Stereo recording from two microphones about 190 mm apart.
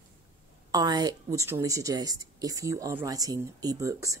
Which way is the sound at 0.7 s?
20° right (ahead or behind).